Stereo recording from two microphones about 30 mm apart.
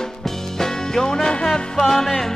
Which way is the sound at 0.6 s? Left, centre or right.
Centre.